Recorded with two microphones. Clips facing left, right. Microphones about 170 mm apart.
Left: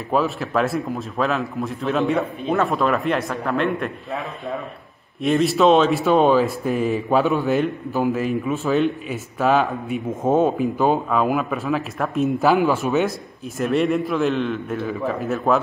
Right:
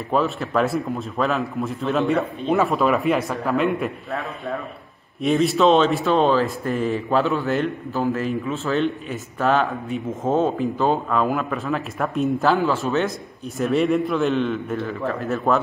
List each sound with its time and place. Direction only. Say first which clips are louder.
0.1 s a man's voice: even; centre (ahead or behind)
12.4 s speech: left 3 dB; 15° left (ahead or behind)
13.6 s a man's voice: even; centre (ahead or behind)